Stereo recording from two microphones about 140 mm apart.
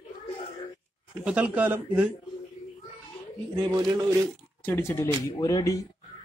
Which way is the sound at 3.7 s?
25° right (ahead or behind).